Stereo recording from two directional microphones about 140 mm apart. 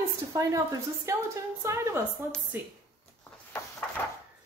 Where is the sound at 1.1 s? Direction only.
20° right (ahead or behind).